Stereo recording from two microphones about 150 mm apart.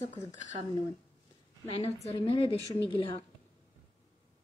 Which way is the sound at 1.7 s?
45° left (ahead or behind).